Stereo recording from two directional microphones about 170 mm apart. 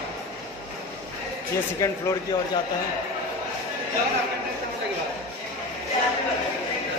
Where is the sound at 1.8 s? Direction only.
20° left (ahead or behind).